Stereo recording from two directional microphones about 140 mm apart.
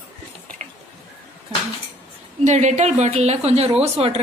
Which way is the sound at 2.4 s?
60° right (ahead or behind).